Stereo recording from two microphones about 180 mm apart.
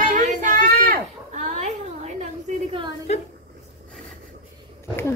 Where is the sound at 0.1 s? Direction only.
45° right (ahead or behind).